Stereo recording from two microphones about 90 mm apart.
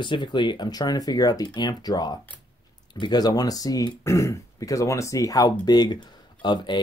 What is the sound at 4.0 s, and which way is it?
Speech, 35° left (ahead or behind).